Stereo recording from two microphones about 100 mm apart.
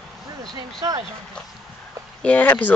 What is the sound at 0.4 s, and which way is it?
Speech, 45° right (ahead or behind).